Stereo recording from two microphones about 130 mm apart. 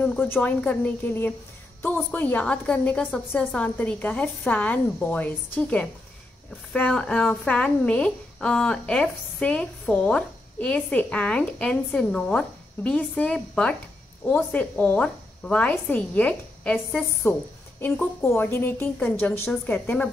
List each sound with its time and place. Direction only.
0.0 s a woman's voice: 15° left (ahead or behind)